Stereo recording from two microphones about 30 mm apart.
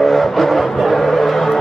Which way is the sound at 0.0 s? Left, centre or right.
Centre.